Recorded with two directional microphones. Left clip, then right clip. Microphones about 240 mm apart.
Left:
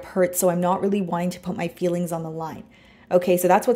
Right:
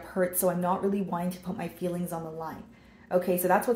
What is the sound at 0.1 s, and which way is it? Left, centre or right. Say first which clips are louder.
Speech: left 7 dB; left.